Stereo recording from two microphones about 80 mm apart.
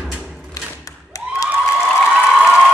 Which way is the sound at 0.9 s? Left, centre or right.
Left.